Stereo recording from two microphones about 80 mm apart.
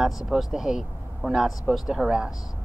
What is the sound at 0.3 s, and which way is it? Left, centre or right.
Speech, centre.